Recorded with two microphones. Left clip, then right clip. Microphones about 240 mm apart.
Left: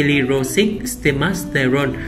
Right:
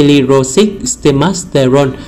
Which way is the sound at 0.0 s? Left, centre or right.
Centre.